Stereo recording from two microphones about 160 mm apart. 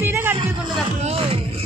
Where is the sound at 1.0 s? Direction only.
40° right (ahead or behind).